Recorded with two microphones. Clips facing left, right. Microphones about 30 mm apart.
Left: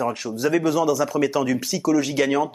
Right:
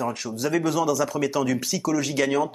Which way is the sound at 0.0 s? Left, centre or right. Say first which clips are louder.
Left 4 dB; centre.